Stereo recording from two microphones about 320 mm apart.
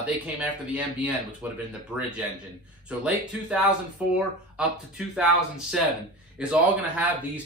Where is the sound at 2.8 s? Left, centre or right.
Centre.